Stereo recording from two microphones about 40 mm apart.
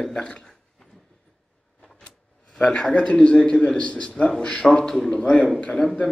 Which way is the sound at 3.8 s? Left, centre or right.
Left.